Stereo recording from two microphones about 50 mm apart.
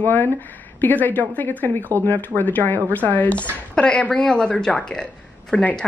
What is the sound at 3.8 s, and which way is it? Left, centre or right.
A woman's voice, centre.